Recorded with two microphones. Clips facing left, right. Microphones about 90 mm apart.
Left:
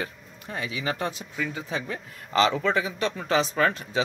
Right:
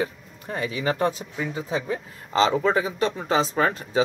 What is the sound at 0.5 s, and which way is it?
Speech, 40° right (ahead or behind).